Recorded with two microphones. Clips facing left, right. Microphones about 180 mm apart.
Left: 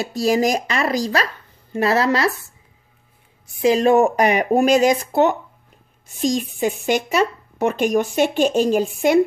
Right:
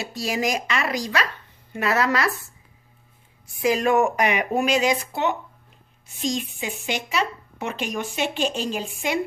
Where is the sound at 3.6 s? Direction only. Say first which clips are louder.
Left 5 dB; 30° left (ahead or behind).